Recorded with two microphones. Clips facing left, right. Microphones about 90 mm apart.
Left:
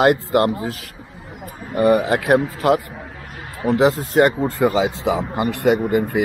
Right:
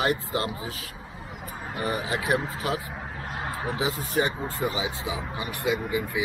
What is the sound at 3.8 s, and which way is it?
Speech, 80° left.